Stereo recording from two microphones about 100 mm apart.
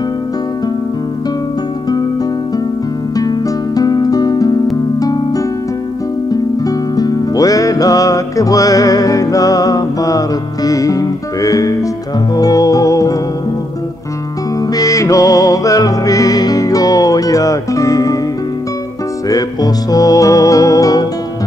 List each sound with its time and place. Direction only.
3.2 s music: 40° left (ahead or behind)
6.6 s music: 40° left (ahead or behind)
14.7 s music: 35° left (ahead or behind)
19.2 s music: 40° left (ahead or behind)